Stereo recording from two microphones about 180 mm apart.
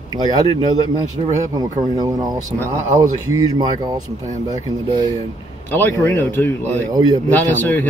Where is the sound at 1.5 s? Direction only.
20° right (ahead or behind).